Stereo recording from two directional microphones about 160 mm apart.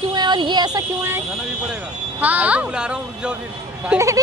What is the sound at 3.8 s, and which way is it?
Speech, 20° right (ahead or behind).